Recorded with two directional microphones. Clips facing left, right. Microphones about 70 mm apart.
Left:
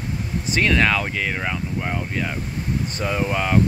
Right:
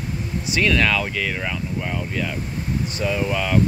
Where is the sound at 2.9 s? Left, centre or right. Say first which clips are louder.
Right 2 dB; left.